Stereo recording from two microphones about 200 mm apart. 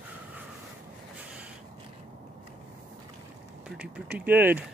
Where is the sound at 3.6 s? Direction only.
5° right (ahead or behind).